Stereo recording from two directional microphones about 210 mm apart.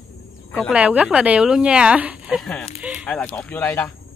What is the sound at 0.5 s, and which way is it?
Speech, 5° right (ahead or behind).